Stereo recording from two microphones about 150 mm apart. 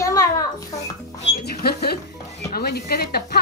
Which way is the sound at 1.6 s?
90° left.